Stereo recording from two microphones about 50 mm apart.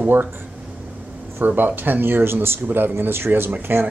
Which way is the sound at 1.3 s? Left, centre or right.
Right.